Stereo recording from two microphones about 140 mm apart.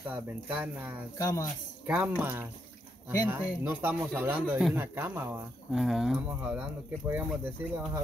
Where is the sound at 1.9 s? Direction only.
15° right (ahead or behind).